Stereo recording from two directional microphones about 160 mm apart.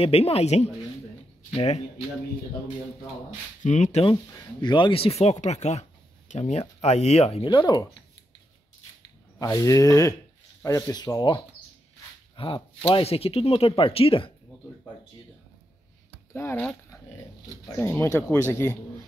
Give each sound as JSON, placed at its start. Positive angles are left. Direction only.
{"t": 0.0, "sound": "speech", "side_deg": 40}
{"t": 3.6, "sound": "speech", "side_deg": 50}
{"t": 4.3, "sound": "speech", "side_deg": 30}
{"t": 9.4, "sound": "speech", "side_deg": 20}
{"t": 16.3, "sound": "speech", "side_deg": 15}